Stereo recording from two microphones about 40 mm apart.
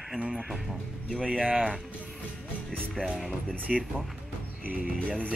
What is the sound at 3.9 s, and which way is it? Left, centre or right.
Cutlery, centre.